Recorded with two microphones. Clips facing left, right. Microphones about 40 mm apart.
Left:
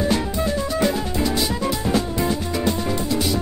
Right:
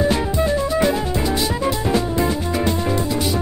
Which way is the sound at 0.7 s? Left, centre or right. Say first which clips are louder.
Right 2 dB; centre.